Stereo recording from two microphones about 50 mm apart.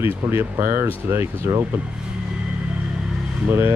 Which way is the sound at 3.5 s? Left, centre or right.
Right.